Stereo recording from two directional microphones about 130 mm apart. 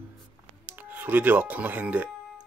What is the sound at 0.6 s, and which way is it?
Speech, 15° right (ahead or behind).